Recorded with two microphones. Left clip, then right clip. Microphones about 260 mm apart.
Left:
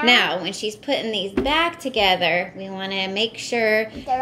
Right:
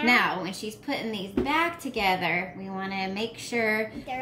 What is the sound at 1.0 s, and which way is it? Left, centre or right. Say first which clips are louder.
Speech: left 7 dB; centre.